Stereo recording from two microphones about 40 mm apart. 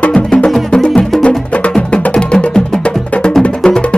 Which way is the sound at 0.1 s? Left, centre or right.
Left.